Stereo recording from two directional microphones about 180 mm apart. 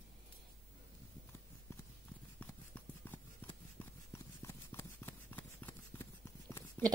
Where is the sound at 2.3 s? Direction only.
10° left (ahead or behind).